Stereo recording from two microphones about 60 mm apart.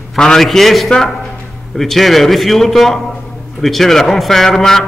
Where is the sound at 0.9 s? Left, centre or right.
Centre.